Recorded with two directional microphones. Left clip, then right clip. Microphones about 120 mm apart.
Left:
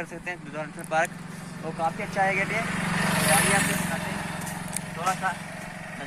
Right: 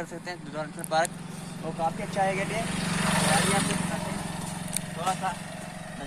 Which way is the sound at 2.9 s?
80° left.